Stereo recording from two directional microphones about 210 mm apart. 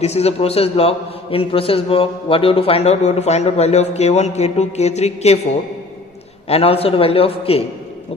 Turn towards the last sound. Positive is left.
turn(degrees=25)  # may be behind; listen again after turning